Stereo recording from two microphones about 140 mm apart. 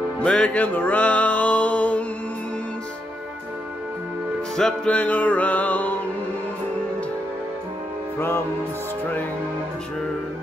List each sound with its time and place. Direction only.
0.2 s music: 10° left (ahead or behind)
4.6 s music: 5° left (ahead or behind)
8.2 s music: 15° left (ahead or behind)